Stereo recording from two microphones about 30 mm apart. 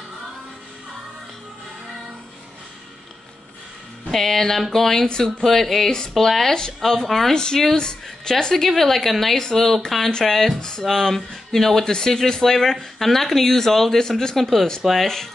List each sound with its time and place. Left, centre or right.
4.1 s speech: centre
7.3 s a woman's voice: left
8.6 s speech: centre
9.4 s speech: centre
10.6 s a woman's voice: left
10.9 s speech: centre
11.8 s a woman's voice: left; by 14.7 s centre